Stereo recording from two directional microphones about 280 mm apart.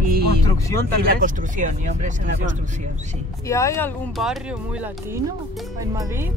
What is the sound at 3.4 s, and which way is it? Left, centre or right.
Speech, centre.